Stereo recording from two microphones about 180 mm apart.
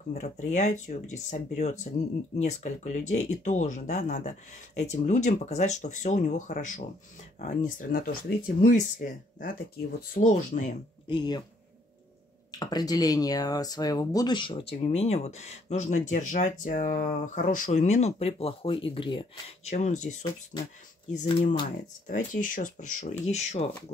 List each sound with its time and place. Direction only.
0.1 s speech: 40° left (ahead or behind)
8.7 s speech: 45° left (ahead or behind)
11.1 s speech: 25° left (ahead or behind)
12.4 s speech: 20° left (ahead or behind)
19.7 s speech: 40° left (ahead or behind)
20.5 s speech: 25° left (ahead or behind)
21.1 s speech: 40° left (ahead or behind)